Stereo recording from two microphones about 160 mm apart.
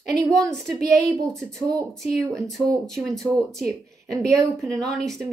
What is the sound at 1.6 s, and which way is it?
Speech, 20° right (ahead or behind).